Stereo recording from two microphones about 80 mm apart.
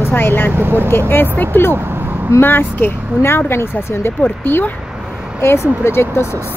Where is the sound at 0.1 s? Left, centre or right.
Left.